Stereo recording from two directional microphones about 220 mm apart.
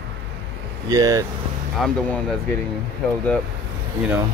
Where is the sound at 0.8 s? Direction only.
15° right (ahead or behind).